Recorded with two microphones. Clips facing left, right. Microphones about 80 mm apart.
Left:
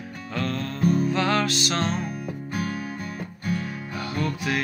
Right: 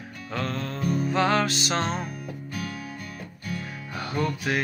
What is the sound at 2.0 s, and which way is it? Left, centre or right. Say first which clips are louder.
Music: left 4 dB; left.